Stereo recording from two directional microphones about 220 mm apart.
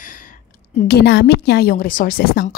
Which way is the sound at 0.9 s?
50° left (ahead or behind).